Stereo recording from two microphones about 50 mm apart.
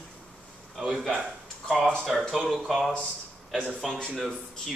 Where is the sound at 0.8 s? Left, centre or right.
Centre.